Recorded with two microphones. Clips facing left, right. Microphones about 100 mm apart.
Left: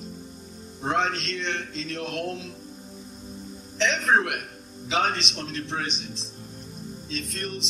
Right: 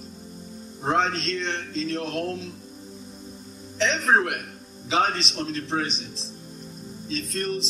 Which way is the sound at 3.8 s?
30° right (ahead or behind).